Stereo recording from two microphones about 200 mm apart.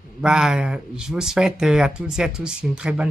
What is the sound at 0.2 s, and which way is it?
Speech, 5° right (ahead or behind).